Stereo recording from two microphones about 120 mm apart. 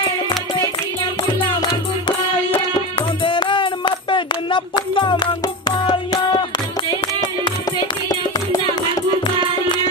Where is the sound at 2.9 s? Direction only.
45° left (ahead or behind).